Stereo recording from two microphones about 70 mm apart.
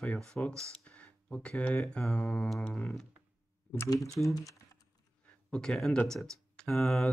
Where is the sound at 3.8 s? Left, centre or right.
Left.